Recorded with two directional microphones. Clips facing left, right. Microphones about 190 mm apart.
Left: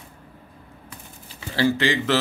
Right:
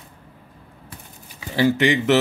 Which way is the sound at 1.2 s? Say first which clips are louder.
Right 2 dB; 15° right (ahead or behind).